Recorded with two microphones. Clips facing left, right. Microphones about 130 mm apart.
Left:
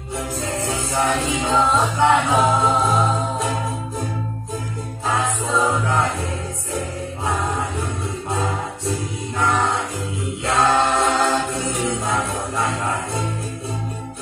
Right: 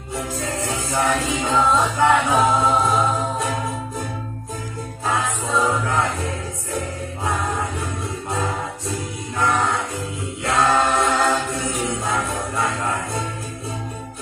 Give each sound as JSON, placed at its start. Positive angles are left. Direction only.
{"t": 0.4, "sound": "music", "side_deg": 25}
{"t": 5.0, "sound": "music", "side_deg": 25}
{"t": 8.3, "sound": "music", "side_deg": 25}